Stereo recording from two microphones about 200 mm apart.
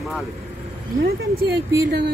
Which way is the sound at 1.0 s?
50° right (ahead or behind).